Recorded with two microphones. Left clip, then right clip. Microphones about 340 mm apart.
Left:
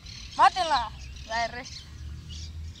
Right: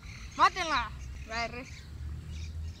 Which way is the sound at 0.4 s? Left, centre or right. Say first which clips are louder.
Left 5 dB; left.